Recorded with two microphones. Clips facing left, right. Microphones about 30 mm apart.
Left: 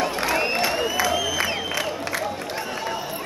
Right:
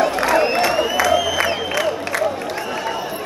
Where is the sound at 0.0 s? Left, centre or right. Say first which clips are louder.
Right 6 dB; centre.